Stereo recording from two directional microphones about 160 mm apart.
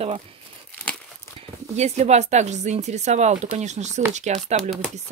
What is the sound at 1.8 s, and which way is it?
Speech, 45° right (ahead or behind).